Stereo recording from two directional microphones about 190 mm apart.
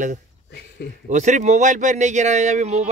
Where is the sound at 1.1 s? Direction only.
40° right (ahead or behind).